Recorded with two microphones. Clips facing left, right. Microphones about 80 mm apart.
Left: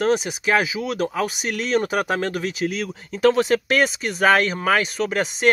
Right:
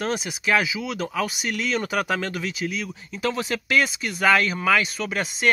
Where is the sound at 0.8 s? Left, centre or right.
Left.